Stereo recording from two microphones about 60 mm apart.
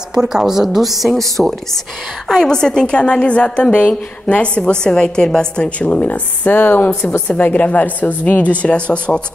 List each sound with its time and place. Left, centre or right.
0.1 s a woman's voice: centre